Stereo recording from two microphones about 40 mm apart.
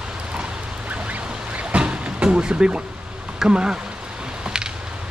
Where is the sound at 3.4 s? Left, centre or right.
Right.